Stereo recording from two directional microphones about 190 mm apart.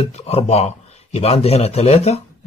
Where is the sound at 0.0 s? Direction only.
30° left (ahead or behind).